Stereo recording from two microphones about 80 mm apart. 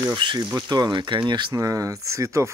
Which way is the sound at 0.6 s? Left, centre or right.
Right.